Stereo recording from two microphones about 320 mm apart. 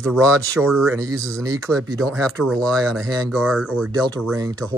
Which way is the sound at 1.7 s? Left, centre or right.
Centre.